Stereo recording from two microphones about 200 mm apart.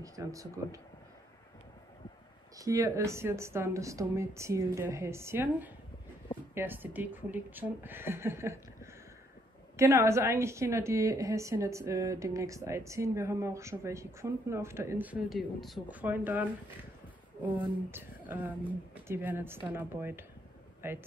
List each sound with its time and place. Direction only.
0.0 s a woman's voice: 15° right (ahead or behind)
2.5 s a woman's voice: 15° right (ahead or behind)
9.8 s a woman's voice: 15° right (ahead or behind)
17.6 s a woman's voice: 10° right (ahead or behind)